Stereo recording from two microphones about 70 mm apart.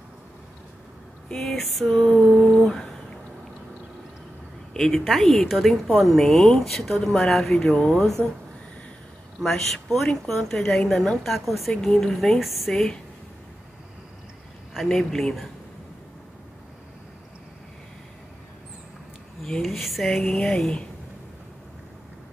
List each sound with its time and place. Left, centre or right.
1.3 s speech: centre
2.0 s a sound: centre
2.3 s a sound: centre
4.7 s speech: centre
7.7 s speech: centre
9.4 s speech: centre
14.7 s speech: centre
19.6 s speech: centre